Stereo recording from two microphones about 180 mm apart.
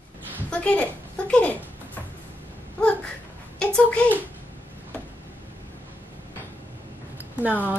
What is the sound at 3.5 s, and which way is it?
Speech, 5° left (ahead or behind).